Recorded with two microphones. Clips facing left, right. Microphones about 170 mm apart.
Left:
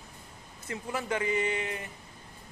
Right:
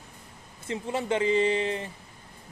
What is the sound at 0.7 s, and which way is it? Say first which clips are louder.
Speech: right 5 dB; 25° right (ahead or behind).